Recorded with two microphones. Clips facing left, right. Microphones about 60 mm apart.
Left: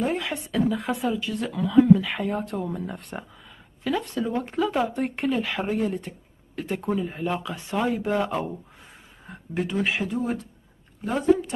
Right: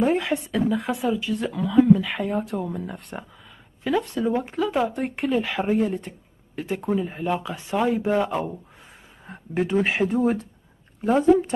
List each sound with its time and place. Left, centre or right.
0.0 s speech: right
0.5 s speech: centre
8.2 s speech: centre
9.3 s speech: right
11.1 s speech: right